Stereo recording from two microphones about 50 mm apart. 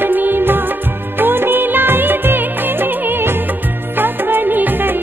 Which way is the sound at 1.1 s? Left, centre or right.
Right.